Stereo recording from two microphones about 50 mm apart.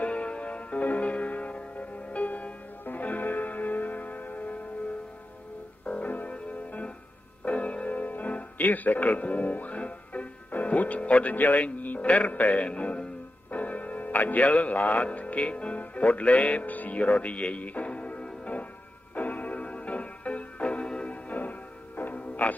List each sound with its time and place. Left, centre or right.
0.0 s music: left
5.9 s music: left
11.3 s a man's voice: left
19.1 s music: left
21.1 s music: left